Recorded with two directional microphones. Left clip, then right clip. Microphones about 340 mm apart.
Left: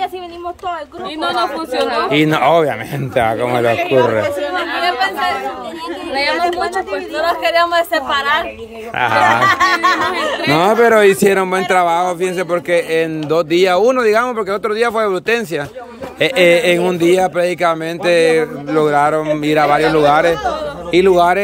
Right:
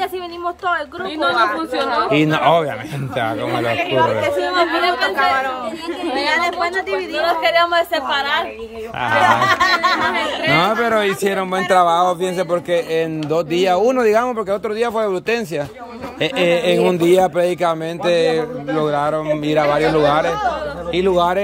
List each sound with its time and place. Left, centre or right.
1.2 s a woman's voice: left
2.1 s speech: centre
3.6 s a woman's voice: left
7.2 s speech: centre